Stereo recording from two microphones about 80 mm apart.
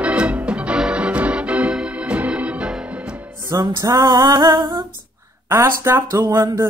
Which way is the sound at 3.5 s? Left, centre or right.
Right.